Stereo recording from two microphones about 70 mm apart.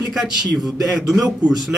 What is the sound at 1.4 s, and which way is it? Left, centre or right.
Speech, centre.